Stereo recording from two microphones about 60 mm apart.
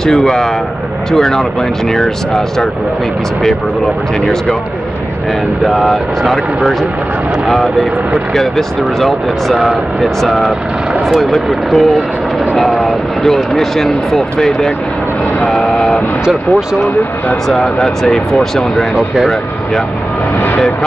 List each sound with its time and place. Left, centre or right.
0.0 s speech: centre
5.7 s speech: centre
16.3 s speech: centre
17.5 s speech: centre
20.3 s vehicle: left